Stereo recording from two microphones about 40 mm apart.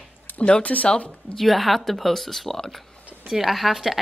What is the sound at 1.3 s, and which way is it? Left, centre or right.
A woman's voice, centre.